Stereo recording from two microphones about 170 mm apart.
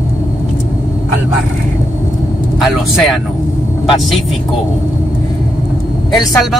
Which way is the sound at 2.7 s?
Centre (ahead or behind).